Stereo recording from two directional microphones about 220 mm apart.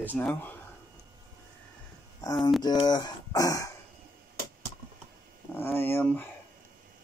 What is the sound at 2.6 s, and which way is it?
Speech, 20° left (ahead or behind).